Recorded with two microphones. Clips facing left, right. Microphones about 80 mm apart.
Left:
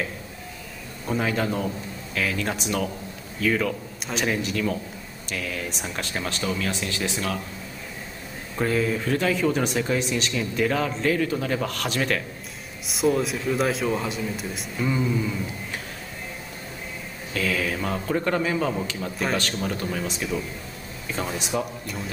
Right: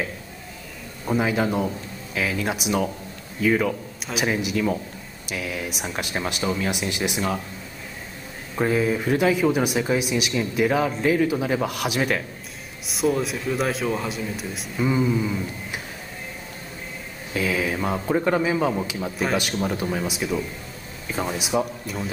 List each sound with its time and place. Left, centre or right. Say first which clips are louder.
1.0 s a man's voice: right 3 dB; centre
8.5 s speech: right 2 dB; centre
12.8 s a man's voice: even; centre
14.9 s speech: right 3 dB; centre
17.3 s a man's voice: right 2 dB; centre